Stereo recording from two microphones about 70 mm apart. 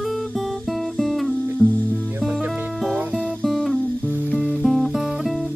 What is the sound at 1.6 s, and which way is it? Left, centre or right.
Music, centre.